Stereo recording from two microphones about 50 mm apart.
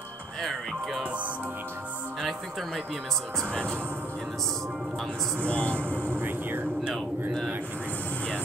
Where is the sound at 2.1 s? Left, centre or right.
Centre.